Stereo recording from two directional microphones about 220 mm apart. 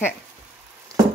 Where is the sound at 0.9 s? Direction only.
15° right (ahead or behind).